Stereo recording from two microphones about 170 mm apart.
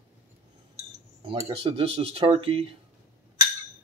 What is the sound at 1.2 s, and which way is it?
Speech, 30° right (ahead or behind).